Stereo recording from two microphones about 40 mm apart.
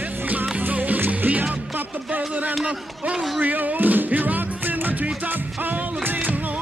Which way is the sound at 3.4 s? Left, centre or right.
Right.